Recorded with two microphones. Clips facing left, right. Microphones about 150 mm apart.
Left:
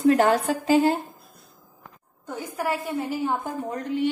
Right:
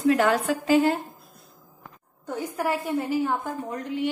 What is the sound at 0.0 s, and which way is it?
Speech, 35° left (ahead or behind).